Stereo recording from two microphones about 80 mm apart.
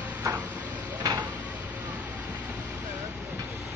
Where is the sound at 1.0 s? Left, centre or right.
Right.